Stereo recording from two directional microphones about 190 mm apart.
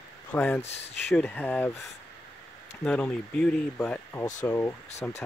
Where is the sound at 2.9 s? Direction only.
5° left (ahead or behind).